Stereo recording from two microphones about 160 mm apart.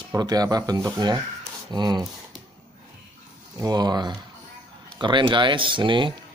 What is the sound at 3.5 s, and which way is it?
Speech, 25° right (ahead or behind).